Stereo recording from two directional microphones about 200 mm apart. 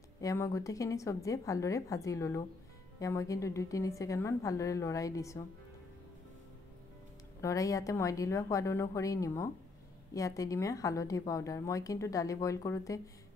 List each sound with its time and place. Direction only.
0.2 s a woman's voice: 15° left (ahead or behind)
7.4 s a woman's voice: 15° left (ahead or behind)